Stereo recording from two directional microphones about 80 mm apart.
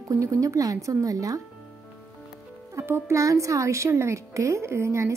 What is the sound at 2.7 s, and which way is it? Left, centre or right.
A woman's voice, right.